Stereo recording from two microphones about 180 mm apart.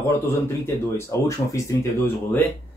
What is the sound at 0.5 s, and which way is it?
Speech, 15° left (ahead or behind).